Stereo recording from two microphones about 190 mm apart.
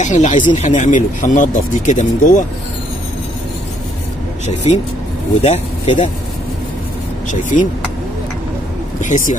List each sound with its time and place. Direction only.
0.0 s speech: 40° left (ahead or behind)
5.4 s speech: 30° left (ahead or behind)
7.2 s speech: 40° left (ahead or behind)
9.0 s speech: 40° left (ahead or behind)